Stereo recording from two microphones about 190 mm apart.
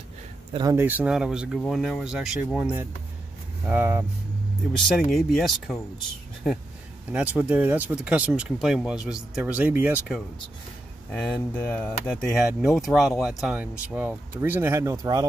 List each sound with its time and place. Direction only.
0.5 s speech: 25° right (ahead or behind)
0.7 s speech: 10° right (ahead or behind)
4.7 s speech: centre (ahead or behind)
7.1 s speech: 10° right (ahead or behind)
11.5 s speech: 10° left (ahead or behind); by 15.2 s 20° right (ahead or behind)